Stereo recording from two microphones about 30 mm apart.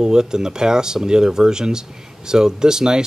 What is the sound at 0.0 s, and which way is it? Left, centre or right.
Speech, right.